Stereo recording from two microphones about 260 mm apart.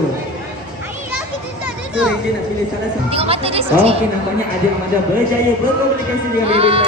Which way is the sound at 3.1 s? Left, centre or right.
Right.